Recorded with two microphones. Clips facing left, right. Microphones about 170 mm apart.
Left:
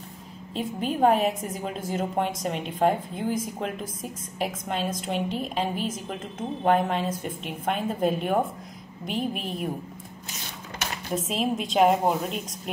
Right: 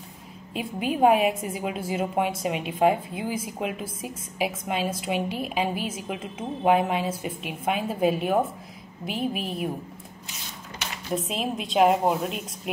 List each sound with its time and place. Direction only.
0.6 s a woman's voice: 10° right (ahead or behind)
10.8 s a sound: 45° left (ahead or behind)
11.1 s a woman's voice: centre (ahead or behind)